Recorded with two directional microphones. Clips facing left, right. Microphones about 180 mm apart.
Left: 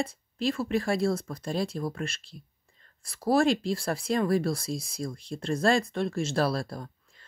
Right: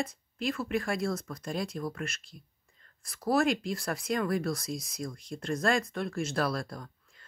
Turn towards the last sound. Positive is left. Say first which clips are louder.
# left 4 dB
turn(degrees=30)  # may be behind; listen again after turning